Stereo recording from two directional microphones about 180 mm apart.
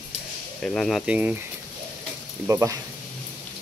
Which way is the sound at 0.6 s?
5° left (ahead or behind).